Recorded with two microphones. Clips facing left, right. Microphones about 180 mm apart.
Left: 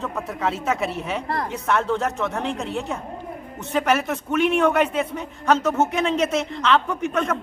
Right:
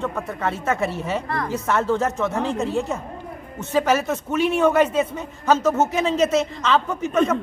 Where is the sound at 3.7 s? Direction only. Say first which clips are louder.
Right 2 dB; centre (ahead or behind).